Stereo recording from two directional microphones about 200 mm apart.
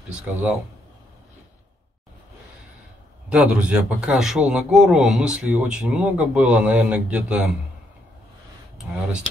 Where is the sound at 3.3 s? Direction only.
5° right (ahead or behind).